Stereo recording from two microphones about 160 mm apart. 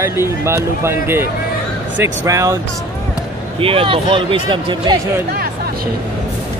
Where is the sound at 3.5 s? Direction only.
35° right (ahead or behind).